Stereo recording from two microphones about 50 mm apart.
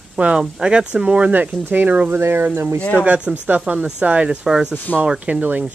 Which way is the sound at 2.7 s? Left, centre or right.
Left.